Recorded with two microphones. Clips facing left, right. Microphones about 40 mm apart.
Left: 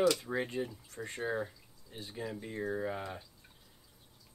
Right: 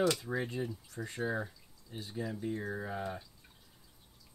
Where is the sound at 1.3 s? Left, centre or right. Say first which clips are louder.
Left 1 dB; centre.